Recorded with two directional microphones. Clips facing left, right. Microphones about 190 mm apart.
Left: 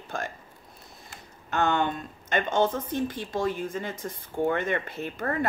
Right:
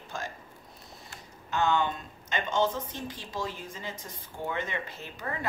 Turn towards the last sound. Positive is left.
turn(degrees=55)  # may be behind; listen again after turning